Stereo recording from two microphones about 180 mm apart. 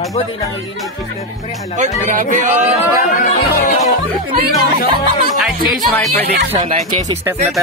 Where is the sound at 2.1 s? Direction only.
45° right (ahead or behind).